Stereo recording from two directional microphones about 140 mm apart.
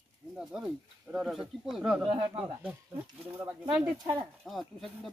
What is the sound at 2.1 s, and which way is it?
Speech, 40° right (ahead or behind).